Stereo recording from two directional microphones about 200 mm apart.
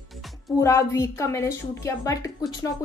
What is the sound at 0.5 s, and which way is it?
Speech, 15° left (ahead or behind).